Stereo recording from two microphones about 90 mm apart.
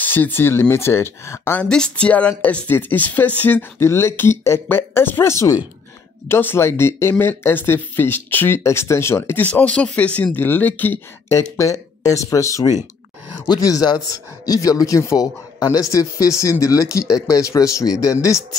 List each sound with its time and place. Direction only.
0.0 s speech: 20° left (ahead or behind)
1.6 s speech: 10° left (ahead or behind)
3.8 s speech: 30° left (ahead or behind)
11.2 s speech: 30° left (ahead or behind)